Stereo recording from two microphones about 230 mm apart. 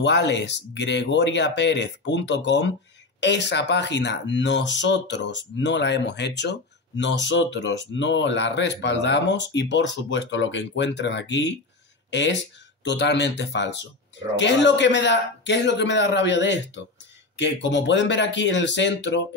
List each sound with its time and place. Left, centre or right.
0.0 s speech: left